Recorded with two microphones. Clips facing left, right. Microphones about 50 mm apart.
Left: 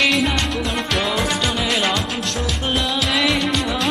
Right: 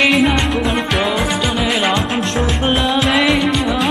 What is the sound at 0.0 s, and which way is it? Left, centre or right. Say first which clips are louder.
Music: right 5 dB; centre.